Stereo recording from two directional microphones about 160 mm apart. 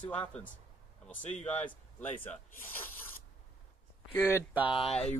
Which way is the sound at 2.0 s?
10° left (ahead or behind).